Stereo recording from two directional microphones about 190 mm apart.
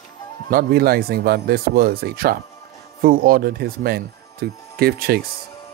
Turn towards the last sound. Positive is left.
turn(degrees=-50)  # may be behind; listen again after turning